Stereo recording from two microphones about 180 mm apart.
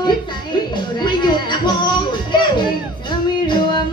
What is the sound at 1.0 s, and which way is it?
Music, 25° left (ahead or behind).